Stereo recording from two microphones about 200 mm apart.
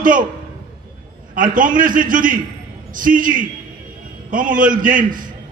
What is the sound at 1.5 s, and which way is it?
A man's voice, 45° right (ahead or behind).